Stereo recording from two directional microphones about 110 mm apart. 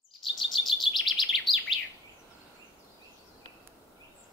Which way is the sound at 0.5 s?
50° left (ahead or behind).